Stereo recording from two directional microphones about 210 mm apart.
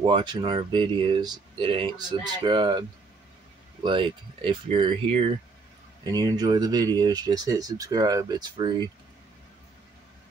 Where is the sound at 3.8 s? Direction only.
25° right (ahead or behind).